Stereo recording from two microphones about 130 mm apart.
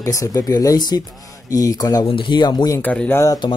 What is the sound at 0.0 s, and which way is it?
Speech, 25° left (ahead or behind).